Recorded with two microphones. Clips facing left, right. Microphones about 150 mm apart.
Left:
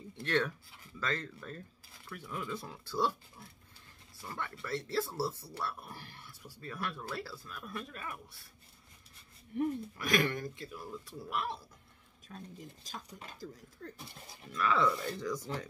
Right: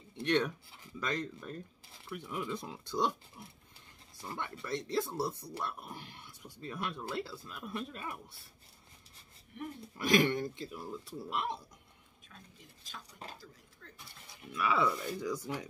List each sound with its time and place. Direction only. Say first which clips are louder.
0.2 s speech: right 2 dB; 15° right (ahead or behind)
9.9 s speech: right 6 dB; 25° right (ahead or behind)
12.3 s speech: left 10 dB; 35° left (ahead or behind)
14.5 s speech: left 1 dB; 10° right (ahead or behind)